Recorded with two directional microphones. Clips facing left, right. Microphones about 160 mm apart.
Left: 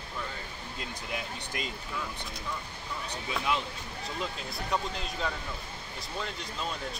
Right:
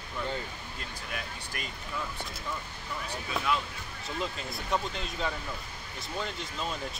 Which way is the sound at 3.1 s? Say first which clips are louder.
Right 1 dB; 20° left (ahead or behind).